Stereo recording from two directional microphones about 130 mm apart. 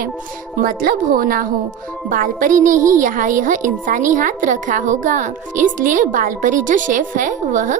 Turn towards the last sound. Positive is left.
turn(degrees=-75)  # may be behind; listen again after turning